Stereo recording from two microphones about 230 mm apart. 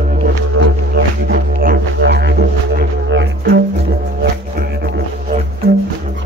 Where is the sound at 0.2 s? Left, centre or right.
Right.